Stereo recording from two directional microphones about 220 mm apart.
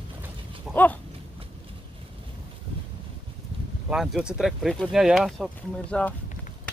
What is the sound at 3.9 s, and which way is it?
Speech, 5° right (ahead or behind).